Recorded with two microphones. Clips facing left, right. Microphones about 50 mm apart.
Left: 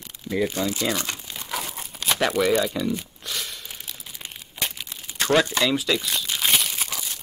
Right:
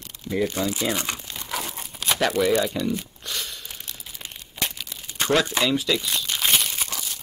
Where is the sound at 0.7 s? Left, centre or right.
Right.